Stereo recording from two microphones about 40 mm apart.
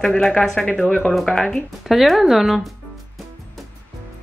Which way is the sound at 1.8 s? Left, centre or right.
Centre.